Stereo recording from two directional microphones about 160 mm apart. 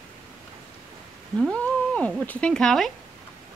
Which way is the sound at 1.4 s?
5° left (ahead or behind).